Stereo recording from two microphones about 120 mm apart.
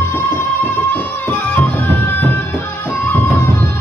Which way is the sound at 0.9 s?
15° left (ahead or behind).